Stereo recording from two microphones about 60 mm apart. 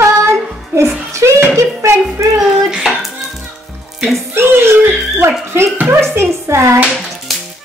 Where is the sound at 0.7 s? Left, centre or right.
Right.